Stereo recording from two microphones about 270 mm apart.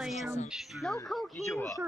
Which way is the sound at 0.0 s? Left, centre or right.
Centre.